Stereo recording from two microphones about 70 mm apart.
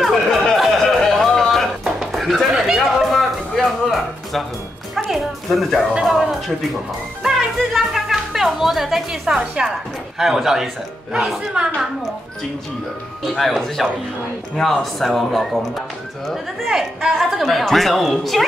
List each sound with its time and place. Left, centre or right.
0.0 s music: centre
2.0 s a sound: centre
4.9 s speech: centre
13.2 s speech: centre